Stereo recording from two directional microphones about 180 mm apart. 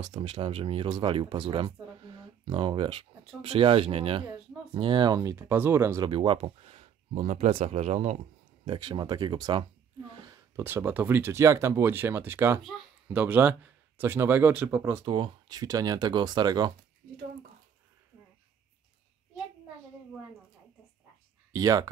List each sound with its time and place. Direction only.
0.0 s speech: 25° right (ahead or behind)
6.0 s speech: 30° right (ahead or behind)
8.6 s speech: 25° right (ahead or behind)
10.2 s a child's voice: 15° right (ahead or behind)
15.0 s speech: 25° right (ahead or behind)
21.5 s speech: 20° right (ahead or behind)